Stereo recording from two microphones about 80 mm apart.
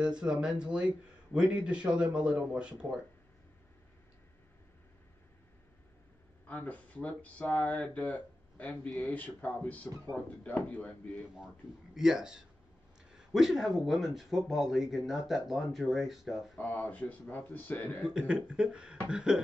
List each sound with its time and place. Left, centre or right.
0.0 s a man's voice: centre
6.4 s speech: centre
11.3 s a man's voice: centre
16.5 s speech: left
18.1 s a man's voice: centre